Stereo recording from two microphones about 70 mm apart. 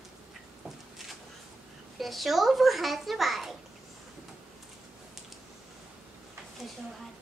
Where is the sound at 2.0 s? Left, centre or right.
Centre.